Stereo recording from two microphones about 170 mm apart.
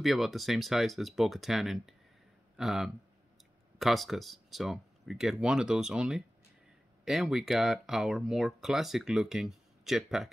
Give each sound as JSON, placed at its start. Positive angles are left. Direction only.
{"t": 0.0, "sound": "speech", "side_deg": 0}